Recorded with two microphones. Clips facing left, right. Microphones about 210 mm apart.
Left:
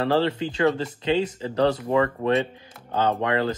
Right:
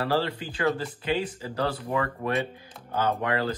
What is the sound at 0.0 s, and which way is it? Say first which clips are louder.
Speech: left 5 dB; 25° left (ahead or behind).